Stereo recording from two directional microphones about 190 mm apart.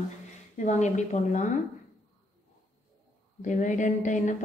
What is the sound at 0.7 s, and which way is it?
Speech, 40° left (ahead or behind).